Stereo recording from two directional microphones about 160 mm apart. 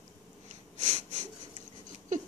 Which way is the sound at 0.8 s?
50° right (ahead or behind).